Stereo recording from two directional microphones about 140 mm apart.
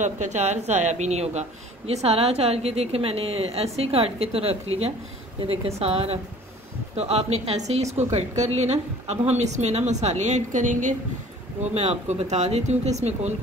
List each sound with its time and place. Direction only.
0.0 s a woman's voice: 55° right (ahead or behind)
11.7 s a woman's voice: 50° right (ahead or behind)